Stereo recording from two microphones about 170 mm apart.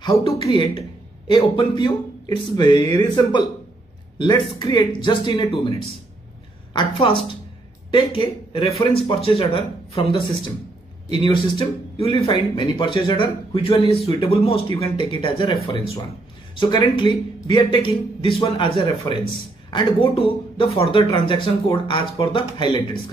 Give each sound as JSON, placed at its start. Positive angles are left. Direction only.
{"t": 0.0, "sound": "a man's voice", "side_deg": 25}